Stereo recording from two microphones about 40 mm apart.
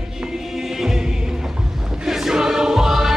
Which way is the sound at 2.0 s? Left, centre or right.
Centre.